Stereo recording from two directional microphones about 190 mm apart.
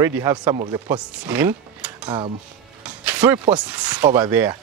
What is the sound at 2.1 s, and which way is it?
Speech, 25° right (ahead or behind).